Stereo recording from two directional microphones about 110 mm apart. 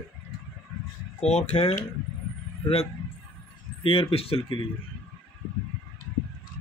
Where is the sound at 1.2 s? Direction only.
90° left.